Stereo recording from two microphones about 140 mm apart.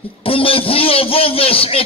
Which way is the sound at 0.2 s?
40° left (ahead or behind).